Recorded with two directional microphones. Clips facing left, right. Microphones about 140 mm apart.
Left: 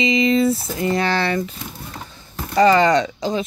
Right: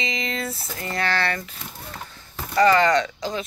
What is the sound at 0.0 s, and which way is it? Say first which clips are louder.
Speech: left 12 dB; 10° left (ahead or behind).